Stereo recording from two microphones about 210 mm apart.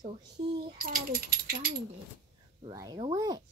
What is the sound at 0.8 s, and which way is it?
Speech, 40° right (ahead or behind).